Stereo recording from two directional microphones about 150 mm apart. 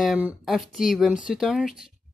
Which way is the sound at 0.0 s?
5° right (ahead or behind).